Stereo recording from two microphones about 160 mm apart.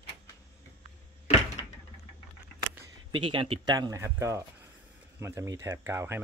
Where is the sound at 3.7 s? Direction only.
20° right (ahead or behind).